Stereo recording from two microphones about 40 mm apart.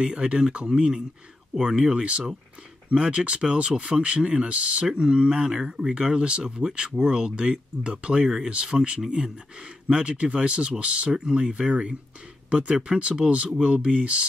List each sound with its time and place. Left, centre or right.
0.0 s speech: right
2.0 s speech: right